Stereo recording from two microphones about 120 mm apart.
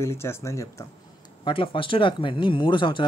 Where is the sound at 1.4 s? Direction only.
45° left (ahead or behind).